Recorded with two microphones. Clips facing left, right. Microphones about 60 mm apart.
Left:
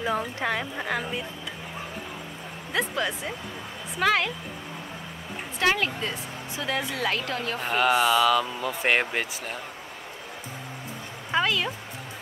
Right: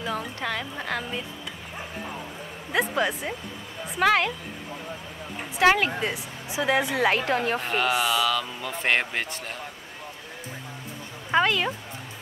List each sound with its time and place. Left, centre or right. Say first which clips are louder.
0.4 s speech: left 2 dB; centre
3.0 s speech: right 3 dB; centre
5.7 s a woman's voice: right 3 dB; centre
7.6 s speech: left 2 dB; centre
11.3 s a sound: right 3 dB; centre